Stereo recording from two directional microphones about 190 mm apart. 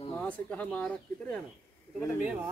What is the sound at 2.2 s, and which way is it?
Speech, 10° right (ahead or behind).